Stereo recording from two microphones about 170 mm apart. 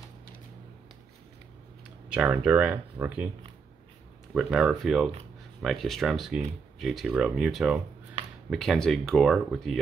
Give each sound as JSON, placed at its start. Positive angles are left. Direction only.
{"t": 2.0, "sound": "speech", "side_deg": -5}
{"t": 4.3, "sound": "speech", "side_deg": -5}